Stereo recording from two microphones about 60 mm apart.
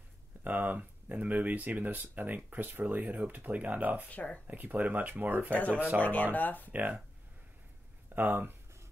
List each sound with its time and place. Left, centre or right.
0.4 s speech: right
4.1 s speech: left
4.5 s speech: right
5.5 s speech: left
6.7 s speech: right
8.1 s speech: right